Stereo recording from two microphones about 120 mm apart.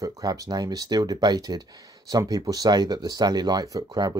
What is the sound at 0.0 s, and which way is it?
Speech, 30° right (ahead or behind).